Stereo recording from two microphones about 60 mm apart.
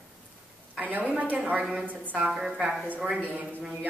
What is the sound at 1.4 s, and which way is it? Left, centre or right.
A woman's voice, centre.